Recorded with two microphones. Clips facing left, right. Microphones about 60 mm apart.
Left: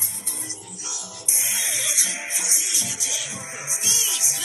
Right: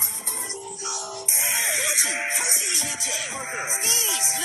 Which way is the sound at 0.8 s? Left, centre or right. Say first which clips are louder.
Right 5 dB; right.